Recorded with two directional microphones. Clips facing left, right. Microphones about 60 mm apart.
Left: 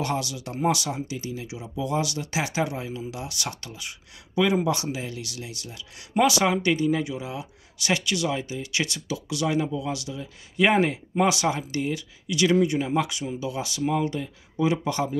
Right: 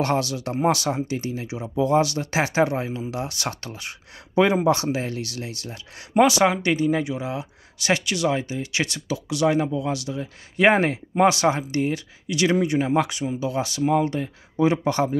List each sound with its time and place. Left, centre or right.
0.0 s speech: right
6.1 s speech: right